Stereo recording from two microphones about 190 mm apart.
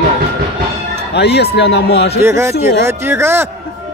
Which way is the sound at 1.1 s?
60° left (ahead or behind).